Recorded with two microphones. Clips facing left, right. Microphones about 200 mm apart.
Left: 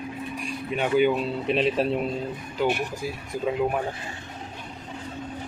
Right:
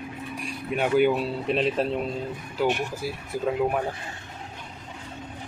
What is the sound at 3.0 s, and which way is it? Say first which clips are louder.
Speech: even; 10° right (ahead or behind).